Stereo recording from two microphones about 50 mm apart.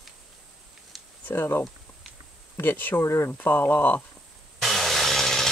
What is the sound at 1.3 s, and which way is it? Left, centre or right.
Speech, left.